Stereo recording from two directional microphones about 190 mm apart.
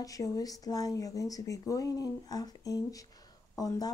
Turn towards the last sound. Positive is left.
turn(degrees=20)  # may be behind; listen again after turning